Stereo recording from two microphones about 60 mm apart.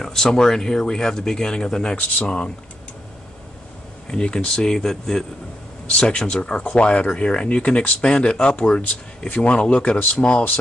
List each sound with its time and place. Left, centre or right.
0.0 s speech: centre
4.1 s speech: centre